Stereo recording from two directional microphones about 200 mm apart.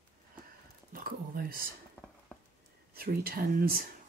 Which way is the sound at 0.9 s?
45° right (ahead or behind).